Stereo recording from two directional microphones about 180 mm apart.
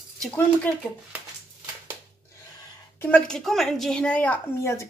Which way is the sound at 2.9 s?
10° left (ahead or behind).